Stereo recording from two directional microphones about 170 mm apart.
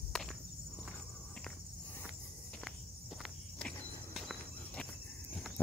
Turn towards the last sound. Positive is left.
turn(degrees=0)  # may be behind; listen again after turning